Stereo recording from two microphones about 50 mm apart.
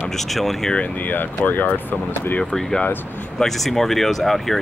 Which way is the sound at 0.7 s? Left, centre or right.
Left.